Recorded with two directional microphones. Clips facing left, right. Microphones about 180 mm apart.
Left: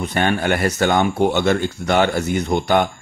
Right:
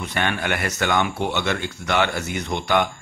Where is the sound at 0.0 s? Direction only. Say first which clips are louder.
Left 6 dB; 40° left (ahead or behind).